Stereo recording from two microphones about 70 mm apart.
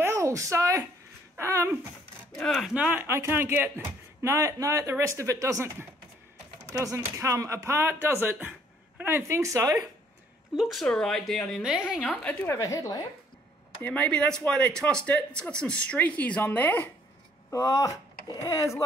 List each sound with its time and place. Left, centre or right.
0.0 s a sound: right
2.3 s speech: centre
2.7 s a woman's voice: centre
3.0 s speech: right
9.4 s speech: right
10.5 s speech: centre
11.6 s a woman's voice: centre
12.0 s speech: centre
12.4 s a woman's voice: left
13.9 s speech: centre
17.5 s speech: left